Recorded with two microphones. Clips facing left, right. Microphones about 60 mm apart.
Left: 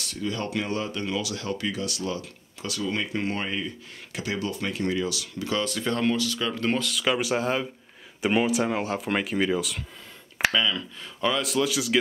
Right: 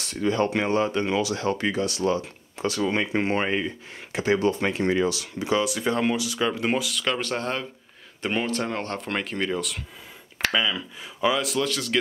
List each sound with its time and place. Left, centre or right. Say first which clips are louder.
0.0 s speech: right 7 dB; right
5.4 s speech: right 4 dB; centre
6.9 s speech: left 2 dB; centre
10.5 s speech: even; centre